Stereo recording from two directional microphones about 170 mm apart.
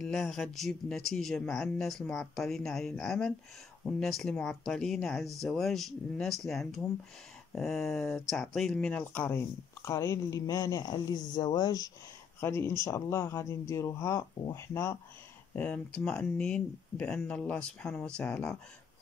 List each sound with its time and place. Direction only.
0.0 s speech: 5° left (ahead or behind)